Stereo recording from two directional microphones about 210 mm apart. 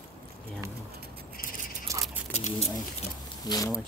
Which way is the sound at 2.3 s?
30° left (ahead or behind).